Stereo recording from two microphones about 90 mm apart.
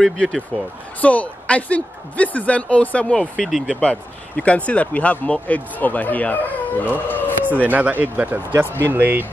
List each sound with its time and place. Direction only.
0.0 s speech: 5° left (ahead or behind)
3.8 s speech: 15° left (ahead or behind)
7.1 s a sound: 20° left (ahead or behind)
7.4 s speech: 20° right (ahead or behind)